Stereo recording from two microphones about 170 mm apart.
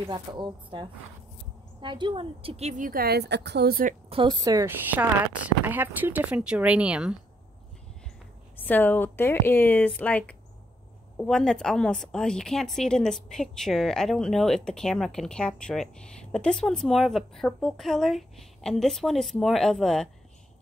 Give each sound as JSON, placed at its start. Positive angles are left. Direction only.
{"t": 0.1, "sound": "a woman's voice", "side_deg": -25}
{"t": 4.1, "sound": "a woman's voice", "side_deg": -30}
{"t": 8.6, "sound": "a woman's voice", "side_deg": 10}